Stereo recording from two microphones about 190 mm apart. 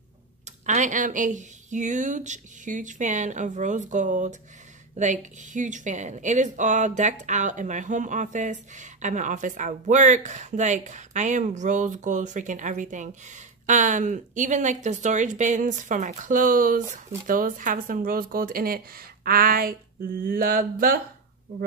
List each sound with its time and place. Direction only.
0.7 s a woman's voice: 40° right (ahead or behind)